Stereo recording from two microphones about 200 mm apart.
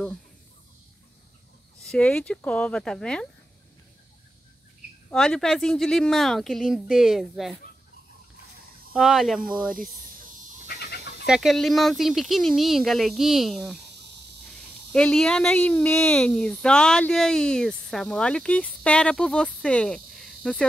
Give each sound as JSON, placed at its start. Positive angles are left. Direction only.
{"t": 1.8, "sound": "a woman's voice", "side_deg": 5}
{"t": 5.1, "sound": "a woman's voice", "side_deg": 5}
{"t": 8.9, "sound": "a woman's voice", "side_deg": 0}
{"t": 10.7, "sound": "chicken", "side_deg": 55}
{"t": 11.2, "sound": "a woman's voice", "side_deg": 0}
{"t": 14.9, "sound": "a woman's voice", "side_deg": 5}